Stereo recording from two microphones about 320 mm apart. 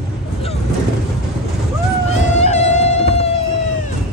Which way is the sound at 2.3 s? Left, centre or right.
Left.